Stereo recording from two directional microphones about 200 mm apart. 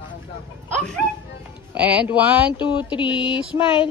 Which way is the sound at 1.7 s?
5° right (ahead or behind).